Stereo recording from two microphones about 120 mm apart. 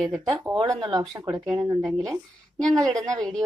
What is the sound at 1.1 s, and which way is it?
Speech, 30° right (ahead or behind).